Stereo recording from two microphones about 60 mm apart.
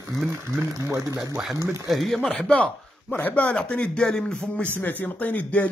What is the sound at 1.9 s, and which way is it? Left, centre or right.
Speech, centre.